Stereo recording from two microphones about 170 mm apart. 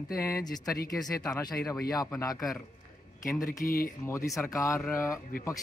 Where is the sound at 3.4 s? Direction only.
55° left (ahead or behind).